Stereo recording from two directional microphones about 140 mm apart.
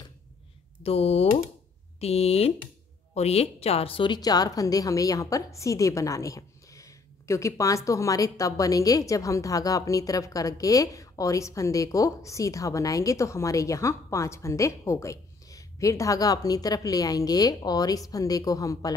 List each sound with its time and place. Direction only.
0.8 s a woman's voice: 45° left (ahead or behind); by 18.9 s 25° left (ahead or behind)